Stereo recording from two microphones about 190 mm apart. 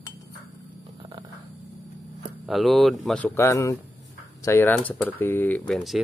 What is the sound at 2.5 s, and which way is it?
Speech, centre (ahead or behind).